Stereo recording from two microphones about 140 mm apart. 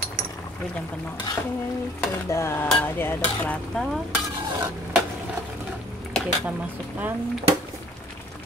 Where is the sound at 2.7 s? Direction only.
15° left (ahead or behind).